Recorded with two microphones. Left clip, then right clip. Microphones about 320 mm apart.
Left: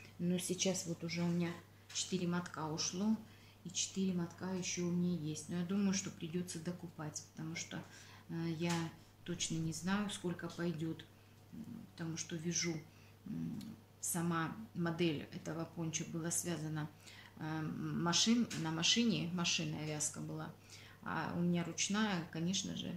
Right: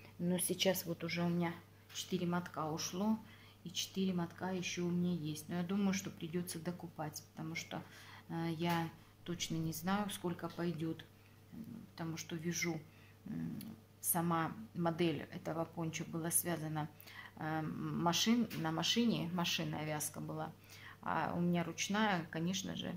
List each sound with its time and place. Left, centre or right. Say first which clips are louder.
0.3 s speech: right 3 dB; right
12.1 s speech: left 1 dB; right